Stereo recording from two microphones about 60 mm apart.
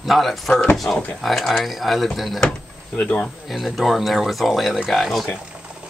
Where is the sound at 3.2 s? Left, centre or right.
Centre.